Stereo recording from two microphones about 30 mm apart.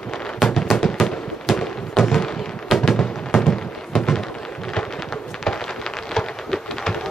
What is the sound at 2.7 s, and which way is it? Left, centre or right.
Music, centre.